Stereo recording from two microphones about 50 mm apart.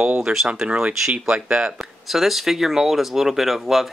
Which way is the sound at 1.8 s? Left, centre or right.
Centre.